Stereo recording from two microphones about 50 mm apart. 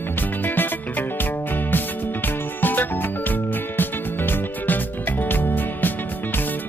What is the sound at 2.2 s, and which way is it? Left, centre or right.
Music, left.